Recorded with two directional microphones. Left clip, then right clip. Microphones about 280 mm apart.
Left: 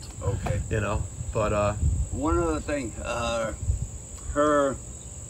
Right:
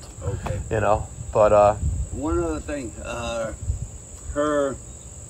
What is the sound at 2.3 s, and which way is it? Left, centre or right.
Speech, left.